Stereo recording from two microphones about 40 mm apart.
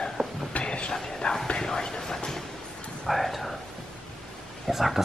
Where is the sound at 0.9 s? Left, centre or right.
Centre.